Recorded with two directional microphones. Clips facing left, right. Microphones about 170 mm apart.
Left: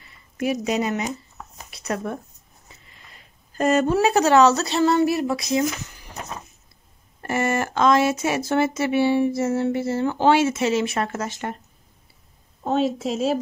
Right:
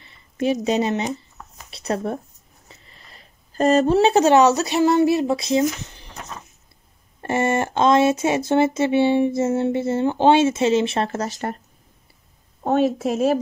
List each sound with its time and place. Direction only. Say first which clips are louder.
0.0 s speech: right 3 dB; 25° right (ahead or behind)
7.2 s speech: right 2 dB; 25° right (ahead or behind)
12.6 s a woman's voice: right 3 dB; 55° right (ahead or behind)